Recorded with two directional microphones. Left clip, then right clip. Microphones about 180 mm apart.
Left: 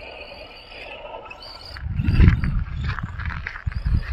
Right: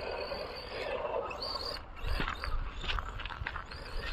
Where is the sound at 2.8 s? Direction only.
25° left (ahead or behind).